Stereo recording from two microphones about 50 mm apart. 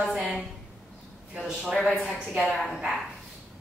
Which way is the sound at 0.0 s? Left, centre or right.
Centre.